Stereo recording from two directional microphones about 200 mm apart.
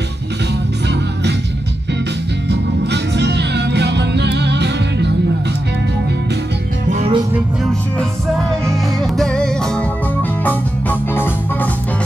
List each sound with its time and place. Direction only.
2.5 s music: 55° right (ahead or behind)
6.9 s music: 35° right (ahead or behind)
7.3 s music: centre (ahead or behind)